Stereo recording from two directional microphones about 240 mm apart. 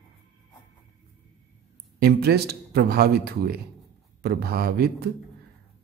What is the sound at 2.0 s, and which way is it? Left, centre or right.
Speech, right.